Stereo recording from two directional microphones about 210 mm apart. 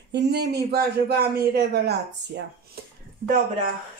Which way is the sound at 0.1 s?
50° right (ahead or behind).